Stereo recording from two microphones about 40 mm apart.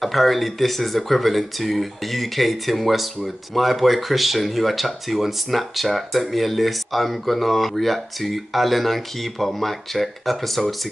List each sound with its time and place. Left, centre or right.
0.0 s speech: centre